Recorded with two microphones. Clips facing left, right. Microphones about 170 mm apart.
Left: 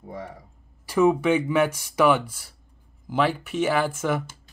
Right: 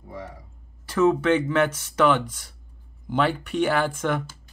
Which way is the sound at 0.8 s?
10° left (ahead or behind).